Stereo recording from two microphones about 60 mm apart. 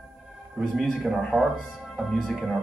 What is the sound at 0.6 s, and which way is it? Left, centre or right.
Speech, centre.